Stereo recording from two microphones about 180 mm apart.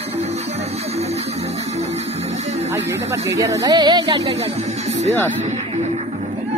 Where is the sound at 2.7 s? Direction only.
15° right (ahead or behind).